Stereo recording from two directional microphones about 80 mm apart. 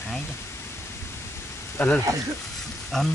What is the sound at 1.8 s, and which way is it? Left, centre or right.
Speech, left.